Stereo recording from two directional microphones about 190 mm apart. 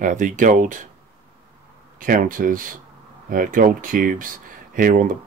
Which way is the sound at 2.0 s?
45° right (ahead or behind).